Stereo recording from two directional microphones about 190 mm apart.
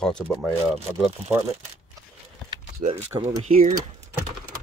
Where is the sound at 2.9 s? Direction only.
35° right (ahead or behind).